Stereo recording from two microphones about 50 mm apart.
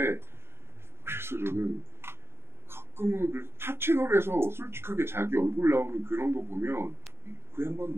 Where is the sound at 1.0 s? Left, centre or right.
Right.